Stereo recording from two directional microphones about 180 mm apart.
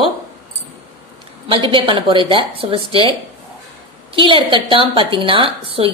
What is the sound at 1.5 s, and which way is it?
A woman's voice, 30° right (ahead or behind).